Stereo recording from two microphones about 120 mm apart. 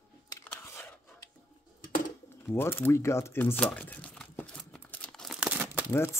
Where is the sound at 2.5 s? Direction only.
20° left (ahead or behind); by 5.4 s 5° left (ahead or behind).